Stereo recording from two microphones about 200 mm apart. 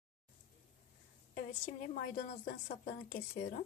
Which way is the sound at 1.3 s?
40° left (ahead or behind).